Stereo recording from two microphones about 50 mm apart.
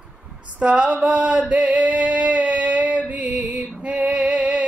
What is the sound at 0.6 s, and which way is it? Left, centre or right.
Female singing, right.